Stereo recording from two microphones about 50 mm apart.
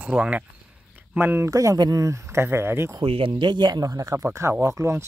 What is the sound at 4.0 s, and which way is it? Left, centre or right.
Speech, right.